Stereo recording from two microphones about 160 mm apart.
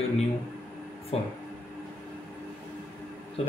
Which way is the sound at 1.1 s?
40° left (ahead or behind).